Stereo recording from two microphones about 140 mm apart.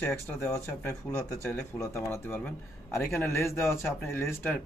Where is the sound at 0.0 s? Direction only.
15° left (ahead or behind).